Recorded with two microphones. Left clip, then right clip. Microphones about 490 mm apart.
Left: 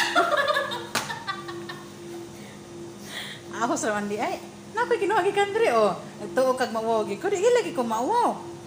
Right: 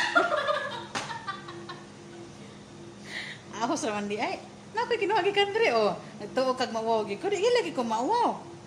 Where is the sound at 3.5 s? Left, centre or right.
Right.